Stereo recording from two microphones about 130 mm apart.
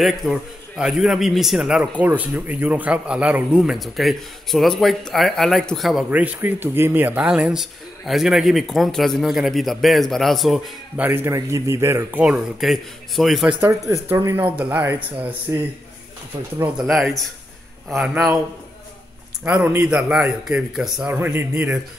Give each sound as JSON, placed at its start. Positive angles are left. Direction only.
{"t": 0.0, "sound": "a man's voice", "side_deg": 0}
{"t": 6.0, "sound": "a man's voice", "side_deg": -10}
{"t": 11.0, "sound": "a man's voice", "side_deg": -15}
{"t": 13.6, "sound": "speech", "side_deg": -25}
{"t": 14.4, "sound": "a man's voice", "side_deg": -10}
{"t": 16.7, "sound": "a man's voice", "side_deg": -5}
{"t": 19.4, "sound": "a man's voice", "side_deg": -10}